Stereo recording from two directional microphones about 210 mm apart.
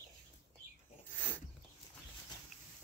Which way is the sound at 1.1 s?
10° left (ahead or behind).